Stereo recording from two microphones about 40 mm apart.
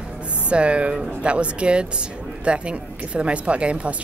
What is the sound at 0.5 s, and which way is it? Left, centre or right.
Speech, right.